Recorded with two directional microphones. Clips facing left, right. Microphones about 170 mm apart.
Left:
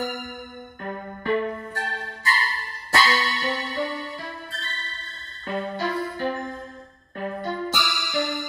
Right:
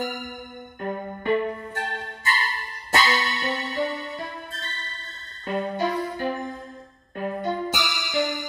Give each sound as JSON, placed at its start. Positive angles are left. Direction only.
{"t": 0.8, "sound": "music", "side_deg": -20}
{"t": 5.5, "sound": "music", "side_deg": -15}